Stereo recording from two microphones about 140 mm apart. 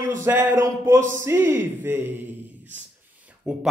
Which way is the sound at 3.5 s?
5° right (ahead or behind).